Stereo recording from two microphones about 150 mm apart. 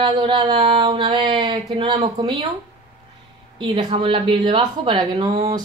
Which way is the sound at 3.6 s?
35° right (ahead or behind).